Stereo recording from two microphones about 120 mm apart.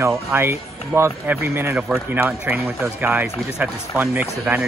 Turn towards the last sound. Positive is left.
turn(degrees=-10)  # may be behind; listen again after turning